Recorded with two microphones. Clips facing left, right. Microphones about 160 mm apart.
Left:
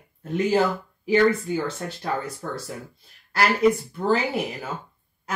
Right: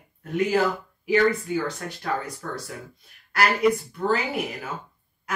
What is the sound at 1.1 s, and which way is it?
Speech, 30° left (ahead or behind).